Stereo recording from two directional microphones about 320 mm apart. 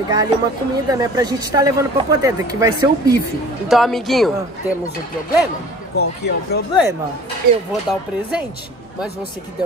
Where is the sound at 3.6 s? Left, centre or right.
Centre.